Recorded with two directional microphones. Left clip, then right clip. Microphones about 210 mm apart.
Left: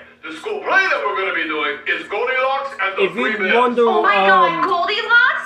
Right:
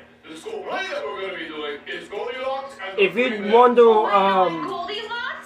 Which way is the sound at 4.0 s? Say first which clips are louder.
Left 5 dB; 50° left (ahead or behind).